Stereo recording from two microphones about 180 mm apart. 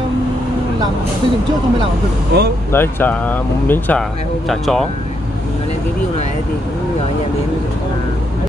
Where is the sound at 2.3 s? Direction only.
65° right (ahead or behind).